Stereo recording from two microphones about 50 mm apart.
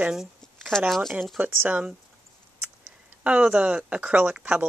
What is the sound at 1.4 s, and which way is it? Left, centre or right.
Speech, right.